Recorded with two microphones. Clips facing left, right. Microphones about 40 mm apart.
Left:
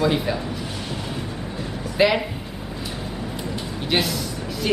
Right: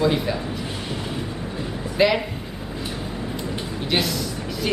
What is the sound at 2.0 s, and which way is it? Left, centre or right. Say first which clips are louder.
Speech: even; centre.